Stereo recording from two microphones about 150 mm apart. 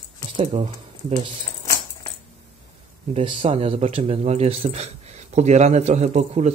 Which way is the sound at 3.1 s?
35° right (ahead or behind).